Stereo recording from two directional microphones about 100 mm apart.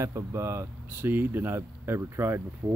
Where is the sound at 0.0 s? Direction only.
30° right (ahead or behind).